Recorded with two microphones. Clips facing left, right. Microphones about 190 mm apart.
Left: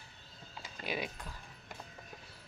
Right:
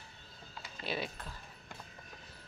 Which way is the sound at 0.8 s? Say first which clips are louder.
Even; 15° left (ahead or behind).